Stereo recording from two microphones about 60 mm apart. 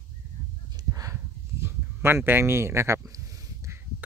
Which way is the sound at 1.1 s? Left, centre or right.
Right.